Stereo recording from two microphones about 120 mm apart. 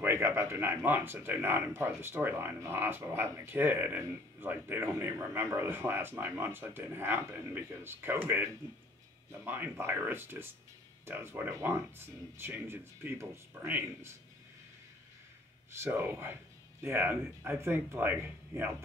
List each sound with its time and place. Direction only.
0.0 s speech: 20° right (ahead or behind)
15.7 s speech: 20° right (ahead or behind)